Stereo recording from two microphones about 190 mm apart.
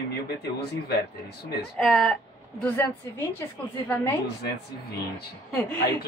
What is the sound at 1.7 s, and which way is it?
A woman's voice, centre (ahead or behind).